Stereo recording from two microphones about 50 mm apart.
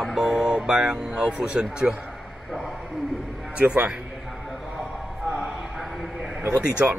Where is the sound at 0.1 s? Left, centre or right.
Centre.